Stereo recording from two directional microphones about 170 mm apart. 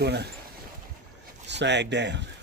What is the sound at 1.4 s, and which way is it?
Speech, 90° right.